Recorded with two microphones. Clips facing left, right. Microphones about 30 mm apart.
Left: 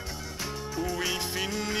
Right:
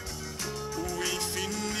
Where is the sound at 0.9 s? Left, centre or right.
Centre.